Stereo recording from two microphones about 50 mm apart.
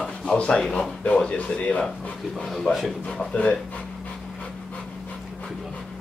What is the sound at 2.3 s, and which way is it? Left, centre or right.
Speech, centre.